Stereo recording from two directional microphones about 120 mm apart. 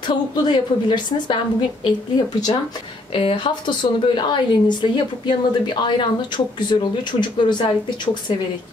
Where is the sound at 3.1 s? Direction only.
50° left (ahead or behind).